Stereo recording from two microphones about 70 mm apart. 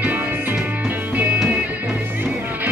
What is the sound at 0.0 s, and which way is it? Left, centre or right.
Music, right.